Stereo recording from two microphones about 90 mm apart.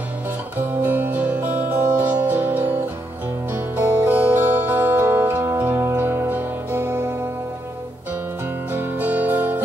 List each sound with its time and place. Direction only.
0.6 s music: 20° right (ahead or behind)
8.7 s music: 20° right (ahead or behind)